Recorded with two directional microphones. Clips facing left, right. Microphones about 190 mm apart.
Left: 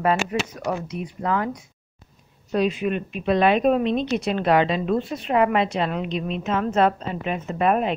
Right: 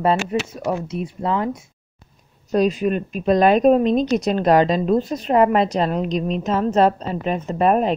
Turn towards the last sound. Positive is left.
turn(degrees=-35)  # may be behind; listen again after turning